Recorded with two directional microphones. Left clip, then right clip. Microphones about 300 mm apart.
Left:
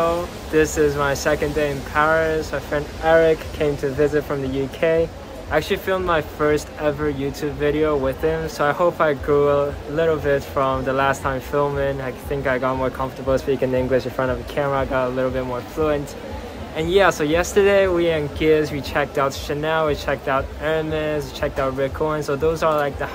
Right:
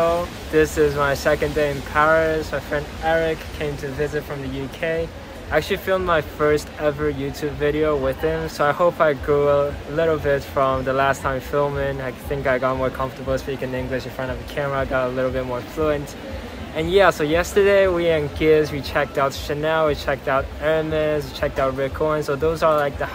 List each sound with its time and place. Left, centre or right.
0.0 s speech: centre
3.0 s speech: left
5.5 s speech: centre
13.3 s speech: left
14.6 s speech: centre